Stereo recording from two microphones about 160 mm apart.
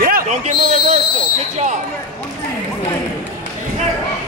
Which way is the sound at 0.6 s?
45° right (ahead or behind).